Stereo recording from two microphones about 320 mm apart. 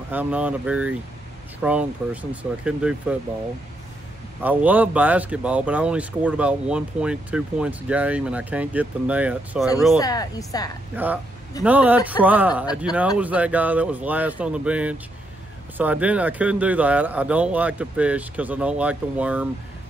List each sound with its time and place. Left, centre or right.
0.1 s speech: centre
4.4 s speech: centre
9.9 s speech: centre
10.9 s speech: centre